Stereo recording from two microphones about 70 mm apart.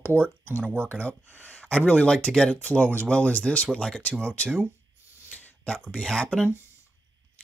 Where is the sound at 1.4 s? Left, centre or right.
Centre.